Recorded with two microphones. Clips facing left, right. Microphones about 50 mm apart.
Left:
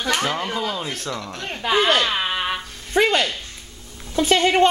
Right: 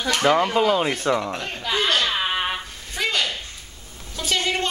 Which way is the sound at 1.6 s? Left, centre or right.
Left.